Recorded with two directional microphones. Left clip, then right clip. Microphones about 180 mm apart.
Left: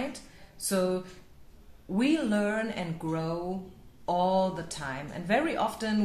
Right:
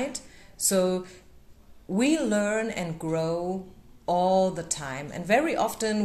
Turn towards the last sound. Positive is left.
turn(degrees=-35)  # may be behind; listen again after turning